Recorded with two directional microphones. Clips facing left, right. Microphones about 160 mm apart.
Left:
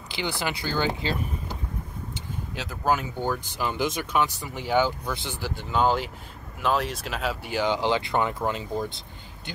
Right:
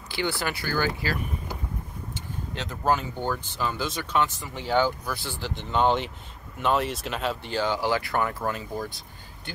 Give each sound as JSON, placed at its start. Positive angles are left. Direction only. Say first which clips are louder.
{"t": 0.1, "sound": "speech", "louder": "right 1 dB", "side_deg": 20}
{"t": 2.5, "sound": "speech", "louder": "even", "side_deg": 5}